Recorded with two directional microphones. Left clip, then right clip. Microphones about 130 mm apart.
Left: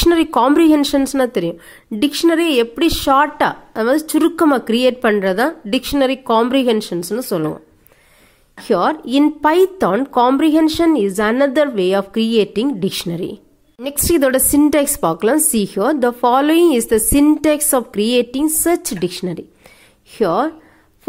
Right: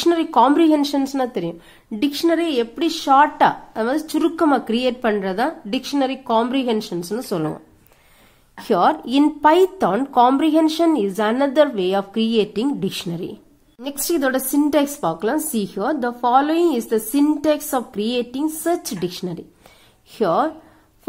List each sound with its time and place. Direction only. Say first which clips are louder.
0.0 s a woman's voice: left 2 dB; 35° left (ahead or behind); by 20.5 s 20° left (ahead or behind)